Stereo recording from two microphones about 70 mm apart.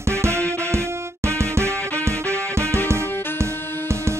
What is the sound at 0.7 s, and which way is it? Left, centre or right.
Music, right.